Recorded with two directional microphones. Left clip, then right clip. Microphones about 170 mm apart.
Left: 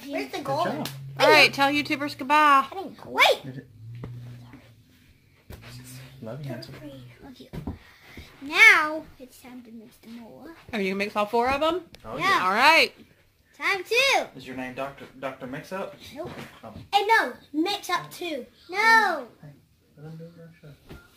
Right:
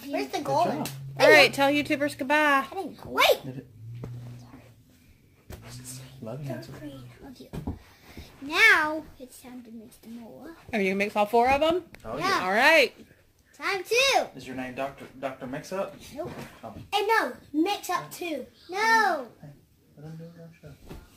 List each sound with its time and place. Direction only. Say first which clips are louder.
0.0 s a sound: right 1 dB; 20° left (ahead or behind)
1.2 s speech: even; 15° left (ahead or behind)
2.7 s babbling: right 1 dB; 50° left (ahead or behind)
3.1 s speech: left 2 dB; 10° left (ahead or behind)
6.2 s speech: even; 30° left (ahead or behind)
8.2 s cat: left 4 dB; 15° left (ahead or behind)
10.3 s speech: right 2 dB; 15° left (ahead or behind)
14.3 s speech: left 1 dB; 55° left (ahead or behind)
16.2 s a child's voice: right 1 dB; 25° left (ahead or behind)
18.7 s speech: left 3 dB; 15° left (ahead or behind)